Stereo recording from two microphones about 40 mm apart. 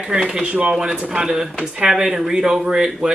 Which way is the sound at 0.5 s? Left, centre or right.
Right.